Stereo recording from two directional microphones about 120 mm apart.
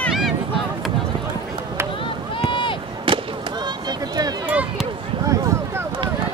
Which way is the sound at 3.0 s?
40° right (ahead or behind).